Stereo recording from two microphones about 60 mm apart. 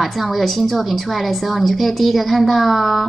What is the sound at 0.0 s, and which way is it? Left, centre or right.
A woman's voice, centre.